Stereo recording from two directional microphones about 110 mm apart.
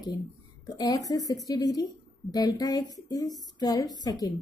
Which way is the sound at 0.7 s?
30° left (ahead or behind).